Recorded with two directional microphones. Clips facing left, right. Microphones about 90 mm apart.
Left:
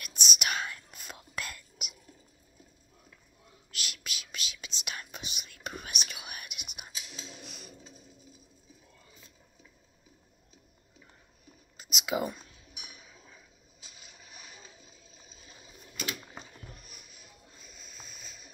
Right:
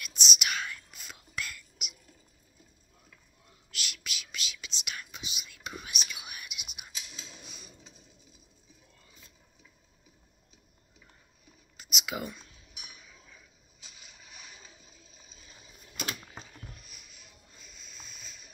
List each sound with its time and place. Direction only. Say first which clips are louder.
0.0 s whispering: even; 45° left (ahead or behind)
3.8 s whispering: even; 35° left (ahead or behind)
5.2 s whispering: left 1 dB; 50° left (ahead or behind)
7.3 s music: left 3 dB; 70° left (ahead or behind)
11.7 s whispering: left 5 dB; 25° left (ahead or behind)
16.7 s music: left 2 dB; 45° left (ahead or behind)
17.7 s a sound: even; 45° left (ahead or behind)